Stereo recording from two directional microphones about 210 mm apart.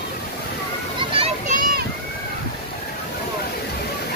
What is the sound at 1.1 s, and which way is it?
Children playing, 25° right (ahead or behind).